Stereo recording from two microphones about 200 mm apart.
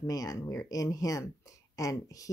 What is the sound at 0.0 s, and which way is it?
Speech, 20° left (ahead or behind).